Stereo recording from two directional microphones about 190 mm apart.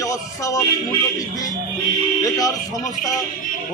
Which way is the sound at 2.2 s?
20° left (ahead or behind).